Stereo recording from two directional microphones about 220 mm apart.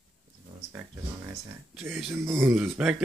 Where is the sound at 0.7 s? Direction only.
5° right (ahead or behind).